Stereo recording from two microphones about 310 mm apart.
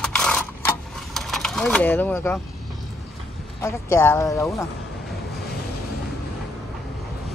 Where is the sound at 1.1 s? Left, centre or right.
Centre.